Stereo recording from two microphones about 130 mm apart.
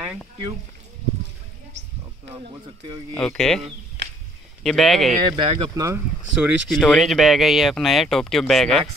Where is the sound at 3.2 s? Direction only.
5° left (ahead or behind).